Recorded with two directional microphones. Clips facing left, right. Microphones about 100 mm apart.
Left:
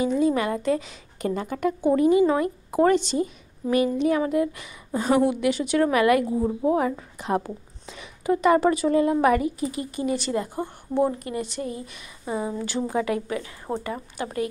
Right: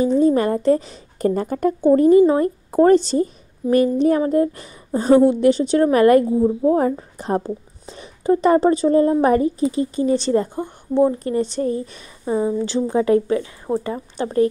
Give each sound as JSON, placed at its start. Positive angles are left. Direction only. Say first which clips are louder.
{"t": 0.0, "sound": "a woman's voice", "louder": "right 6 dB", "side_deg": -40}
{"t": 13.7, "sound": "a woman's voice", "louder": "right 7 dB", "side_deg": -15}
{"t": 14.1, "sound": "a woman's voice", "louder": "right 11 dB", "side_deg": -35}